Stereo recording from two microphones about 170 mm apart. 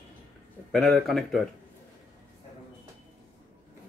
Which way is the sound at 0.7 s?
Centre (ahead or behind).